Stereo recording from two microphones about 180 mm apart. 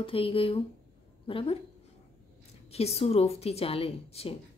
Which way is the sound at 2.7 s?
35° left (ahead or behind).